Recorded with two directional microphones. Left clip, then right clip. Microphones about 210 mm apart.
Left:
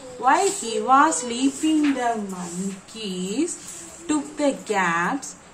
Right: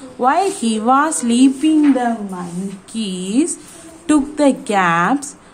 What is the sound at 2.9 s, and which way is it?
A woman's voice, 55° right (ahead or behind).